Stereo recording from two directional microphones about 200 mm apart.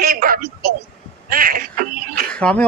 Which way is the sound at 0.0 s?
50° right (ahead or behind).